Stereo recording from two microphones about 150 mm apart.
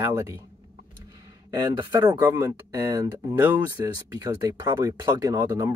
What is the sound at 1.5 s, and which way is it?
Speech, 30° right (ahead or behind).